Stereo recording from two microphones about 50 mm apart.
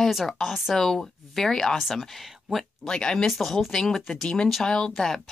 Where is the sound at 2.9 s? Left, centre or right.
Centre.